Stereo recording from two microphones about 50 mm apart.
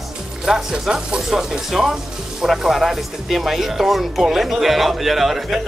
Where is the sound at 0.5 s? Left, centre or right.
Centre.